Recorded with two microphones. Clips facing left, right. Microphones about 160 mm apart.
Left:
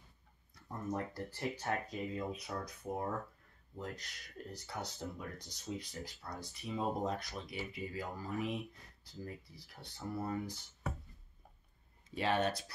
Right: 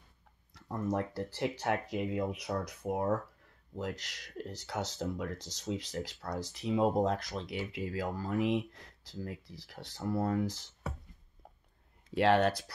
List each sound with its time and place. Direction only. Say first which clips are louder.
0.6 s speech: right 6 dB; 90° right
12.1 s speech: right 7 dB; 90° right